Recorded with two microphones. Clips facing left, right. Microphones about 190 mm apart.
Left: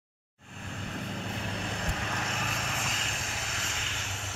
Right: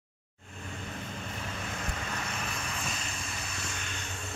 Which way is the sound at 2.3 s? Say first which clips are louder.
Left 2 dB; 90° left.